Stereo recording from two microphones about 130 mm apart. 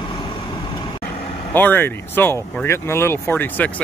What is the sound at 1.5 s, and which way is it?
Speech, 15° left (ahead or behind).